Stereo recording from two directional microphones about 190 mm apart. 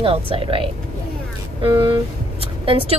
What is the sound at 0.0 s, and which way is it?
Speech, 30° right (ahead or behind).